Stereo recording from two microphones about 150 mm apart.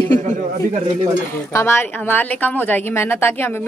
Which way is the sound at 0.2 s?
55° right (ahead or behind).